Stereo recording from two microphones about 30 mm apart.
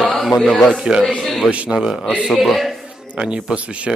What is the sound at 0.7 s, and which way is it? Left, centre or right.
Speech, right.